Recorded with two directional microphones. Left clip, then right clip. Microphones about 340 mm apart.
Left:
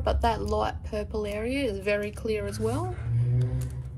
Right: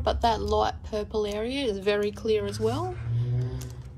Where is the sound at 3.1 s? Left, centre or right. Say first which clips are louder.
Left 2 dB; right.